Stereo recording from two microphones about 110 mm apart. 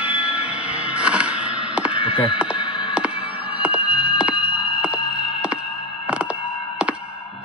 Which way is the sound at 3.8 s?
55° left (ahead or behind).